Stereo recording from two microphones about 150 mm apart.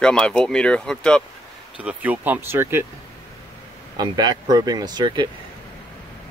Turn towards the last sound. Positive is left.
turn(degrees=-30)  # may be behind; listen again after turning